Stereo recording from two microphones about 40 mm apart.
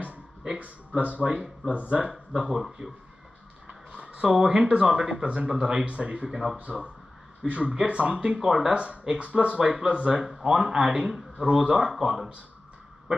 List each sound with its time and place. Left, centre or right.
0.0 s a sound: right
0.6 s speech: right
2.5 s speech: centre
3.9 s a sound: right
4.4 s speech: centre
5.9 s speech: right
6.3 s speech: centre
6.6 s speech: right
8.4 s speech: centre
8.7 s speech: right
11.4 s speech: right